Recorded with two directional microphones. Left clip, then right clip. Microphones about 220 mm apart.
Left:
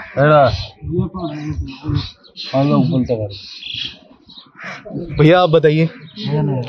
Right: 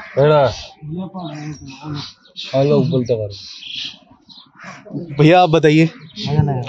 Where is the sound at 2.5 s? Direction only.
20° right (ahead or behind).